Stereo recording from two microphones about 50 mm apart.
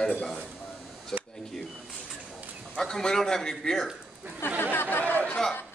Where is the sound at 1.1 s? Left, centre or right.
Centre.